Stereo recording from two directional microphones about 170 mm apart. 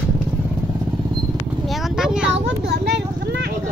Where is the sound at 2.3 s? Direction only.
90° right.